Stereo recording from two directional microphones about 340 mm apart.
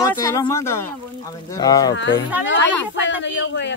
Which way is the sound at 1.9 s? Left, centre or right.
Left.